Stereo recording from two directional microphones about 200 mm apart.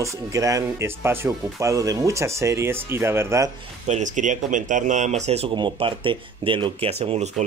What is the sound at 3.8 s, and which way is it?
Speech, 35° right (ahead or behind).